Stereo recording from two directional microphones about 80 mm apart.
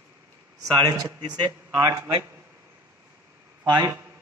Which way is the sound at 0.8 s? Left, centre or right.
Right.